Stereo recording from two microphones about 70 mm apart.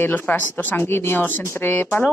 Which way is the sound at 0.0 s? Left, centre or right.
Left.